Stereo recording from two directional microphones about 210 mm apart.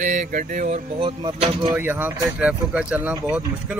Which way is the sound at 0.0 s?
35° right (ahead or behind).